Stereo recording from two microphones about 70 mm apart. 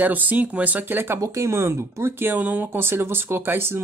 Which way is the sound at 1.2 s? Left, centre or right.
Right.